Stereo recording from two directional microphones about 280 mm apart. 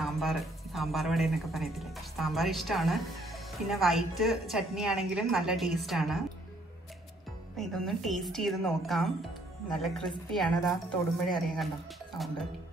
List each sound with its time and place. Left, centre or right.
0.0 s speech: centre
7.5 s speech: centre